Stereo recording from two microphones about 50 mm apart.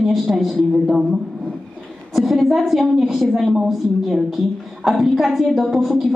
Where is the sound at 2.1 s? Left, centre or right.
Centre.